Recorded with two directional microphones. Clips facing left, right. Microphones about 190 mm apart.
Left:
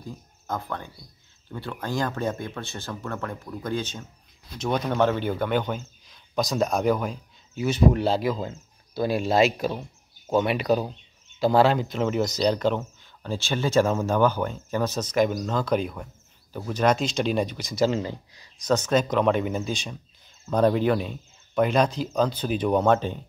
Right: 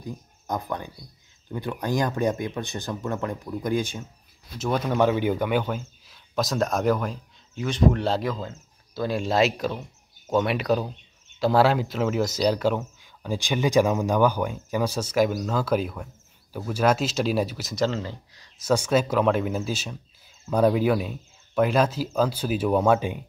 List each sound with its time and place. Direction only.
0.0 s a man's voice: 15° right (ahead or behind); by 8.4 s 5° left (ahead or behind)
8.4 s a man's voice: 15° left (ahead or behind); by 17.8 s 5° right (ahead or behind)
17.8 s speech: 15° left (ahead or behind)
18.6 s a man's voice: 10° right (ahead or behind)